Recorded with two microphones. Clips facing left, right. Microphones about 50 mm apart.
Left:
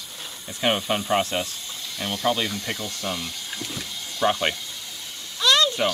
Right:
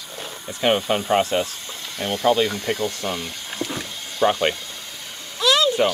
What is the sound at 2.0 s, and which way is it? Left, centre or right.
Speech, centre.